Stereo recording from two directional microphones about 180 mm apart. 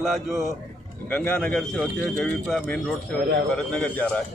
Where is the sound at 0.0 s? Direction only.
Centre (ahead or behind).